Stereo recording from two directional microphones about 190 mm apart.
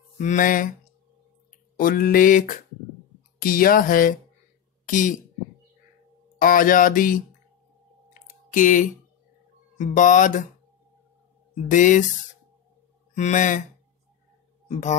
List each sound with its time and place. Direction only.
0.2 s speech: 40° left (ahead or behind)
1.8 s speech: 50° left (ahead or behind)
6.3 s speech: 45° left (ahead or behind)
8.1 s a sound: 40° left (ahead or behind)
9.8 s speech: 40° left (ahead or behind)
11.5 s speech: 40° left (ahead or behind)
13.1 s speech: 40° left (ahead or behind)
14.7 s speech: 40° left (ahead or behind)